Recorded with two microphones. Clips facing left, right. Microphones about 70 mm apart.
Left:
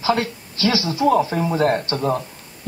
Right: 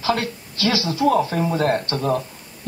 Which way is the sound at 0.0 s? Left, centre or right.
Centre.